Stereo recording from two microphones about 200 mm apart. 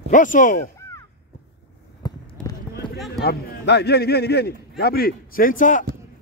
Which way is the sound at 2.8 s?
25° left (ahead or behind).